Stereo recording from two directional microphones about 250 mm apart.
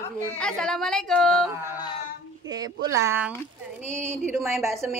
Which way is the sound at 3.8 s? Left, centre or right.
Left.